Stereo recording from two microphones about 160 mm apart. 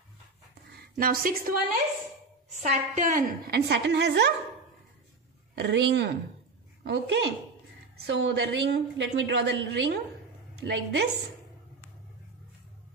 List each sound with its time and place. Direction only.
0.9 s a woman's voice: 65° right (ahead or behind)
2.6 s a woman's voice: 45° right (ahead or behind)
3.5 s a woman's voice: 90° right
5.6 s a woman's voice: 90° right